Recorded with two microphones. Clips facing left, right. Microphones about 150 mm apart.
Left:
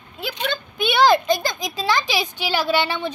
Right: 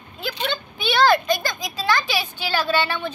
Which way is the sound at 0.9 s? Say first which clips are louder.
Left 1 dB; 20° left (ahead or behind).